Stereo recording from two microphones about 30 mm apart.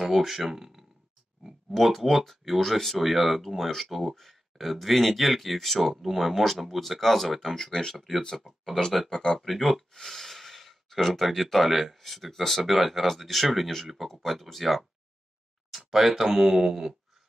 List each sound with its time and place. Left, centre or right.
0.0 s speech: centre
1.7 s speech: centre
9.1 s speech: centre
9.4 s speech: centre
15.9 s speech: centre